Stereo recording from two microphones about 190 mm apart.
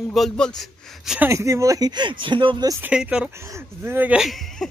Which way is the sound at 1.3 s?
15° right (ahead or behind).